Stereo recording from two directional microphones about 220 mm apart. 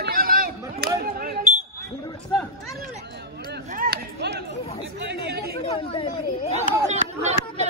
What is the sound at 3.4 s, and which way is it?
Chop, 45° right (ahead or behind).